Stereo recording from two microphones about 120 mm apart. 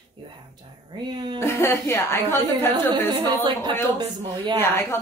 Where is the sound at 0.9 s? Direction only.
40° right (ahead or behind).